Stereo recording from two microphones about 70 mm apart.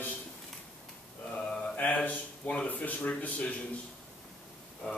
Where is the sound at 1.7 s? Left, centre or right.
Left.